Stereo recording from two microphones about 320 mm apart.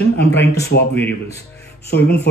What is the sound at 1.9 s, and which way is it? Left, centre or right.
Speech, left.